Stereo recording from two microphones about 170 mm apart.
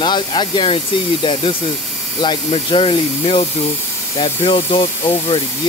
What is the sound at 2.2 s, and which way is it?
Speech, 30° left (ahead or behind).